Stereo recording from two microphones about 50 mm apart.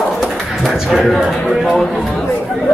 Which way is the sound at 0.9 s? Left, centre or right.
Centre.